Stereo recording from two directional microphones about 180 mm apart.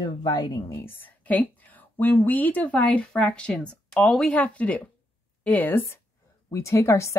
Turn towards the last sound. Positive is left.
turn(degrees=15)  # may be behind; listen again after turning